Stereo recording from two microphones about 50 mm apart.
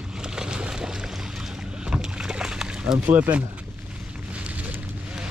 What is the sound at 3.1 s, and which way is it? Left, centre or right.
Speech, right.